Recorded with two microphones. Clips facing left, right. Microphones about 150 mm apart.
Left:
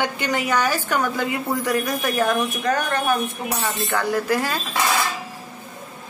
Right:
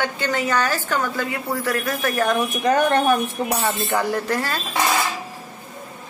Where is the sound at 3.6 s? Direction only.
15° right (ahead or behind).